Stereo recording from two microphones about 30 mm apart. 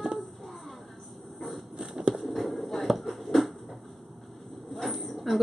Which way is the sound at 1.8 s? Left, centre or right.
Right.